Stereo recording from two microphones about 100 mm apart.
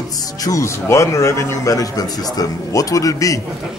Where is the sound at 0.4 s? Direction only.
30° left (ahead or behind).